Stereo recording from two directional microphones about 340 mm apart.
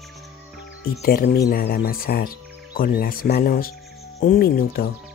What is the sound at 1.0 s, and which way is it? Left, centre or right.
Speech, left.